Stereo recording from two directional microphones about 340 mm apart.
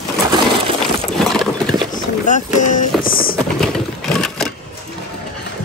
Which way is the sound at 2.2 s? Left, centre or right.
Left.